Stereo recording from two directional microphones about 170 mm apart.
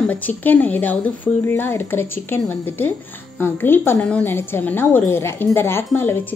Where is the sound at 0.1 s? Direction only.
10° left (ahead or behind).